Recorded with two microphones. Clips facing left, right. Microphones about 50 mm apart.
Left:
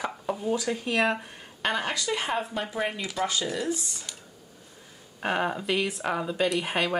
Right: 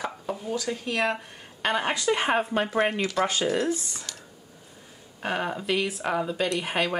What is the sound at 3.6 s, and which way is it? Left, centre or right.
Speech, right.